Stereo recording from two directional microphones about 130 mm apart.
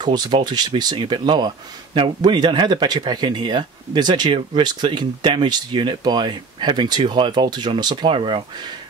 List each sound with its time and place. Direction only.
0.0 s speech: 35° right (ahead or behind)